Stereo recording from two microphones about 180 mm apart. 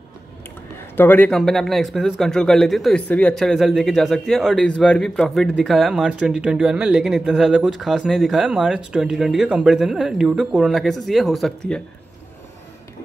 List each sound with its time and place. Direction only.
0.9 s speech: 10° left (ahead or behind)